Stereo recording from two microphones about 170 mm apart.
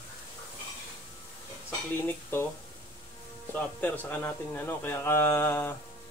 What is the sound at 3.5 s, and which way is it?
Speech, 10° left (ahead or behind).